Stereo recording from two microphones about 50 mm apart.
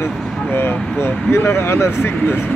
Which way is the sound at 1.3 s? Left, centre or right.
Left.